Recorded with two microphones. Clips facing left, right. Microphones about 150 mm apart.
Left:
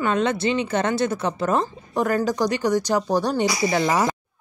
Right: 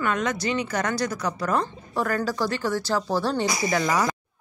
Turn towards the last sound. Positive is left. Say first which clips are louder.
# left 3 dB
turn(degrees=25)  # may be behind; listen again after turning